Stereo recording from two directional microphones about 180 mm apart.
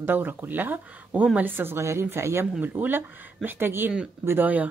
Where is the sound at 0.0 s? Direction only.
10° right (ahead or behind).